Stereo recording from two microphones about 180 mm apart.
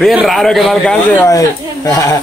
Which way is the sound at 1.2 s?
20° left (ahead or behind).